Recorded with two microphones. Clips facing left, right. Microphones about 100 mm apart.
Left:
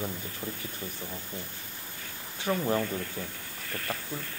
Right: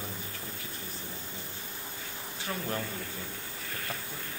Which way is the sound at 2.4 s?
25° left (ahead or behind).